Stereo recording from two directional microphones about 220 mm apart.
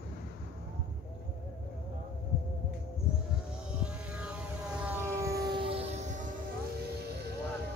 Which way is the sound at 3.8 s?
5° right (ahead or behind).